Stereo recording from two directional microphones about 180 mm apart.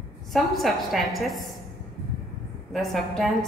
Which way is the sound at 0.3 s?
Centre (ahead or behind).